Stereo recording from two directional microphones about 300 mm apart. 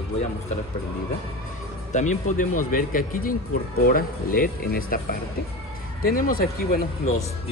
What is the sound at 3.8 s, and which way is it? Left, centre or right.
Speech, left.